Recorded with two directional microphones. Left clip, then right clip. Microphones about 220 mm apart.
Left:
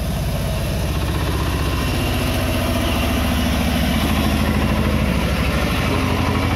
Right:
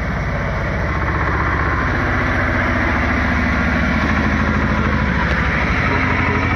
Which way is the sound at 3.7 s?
45° left (ahead or behind).